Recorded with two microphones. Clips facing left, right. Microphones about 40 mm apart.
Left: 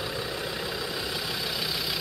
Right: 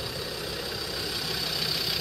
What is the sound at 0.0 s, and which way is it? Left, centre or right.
Vehicle, left.